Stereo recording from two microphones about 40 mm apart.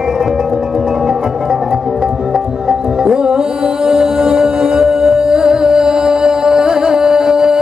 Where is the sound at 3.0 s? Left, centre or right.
Centre.